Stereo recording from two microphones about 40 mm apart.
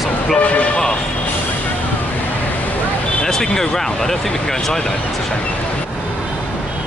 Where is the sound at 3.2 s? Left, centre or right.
Centre.